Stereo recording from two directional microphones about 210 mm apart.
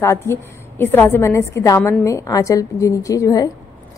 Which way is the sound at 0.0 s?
10° left (ahead or behind).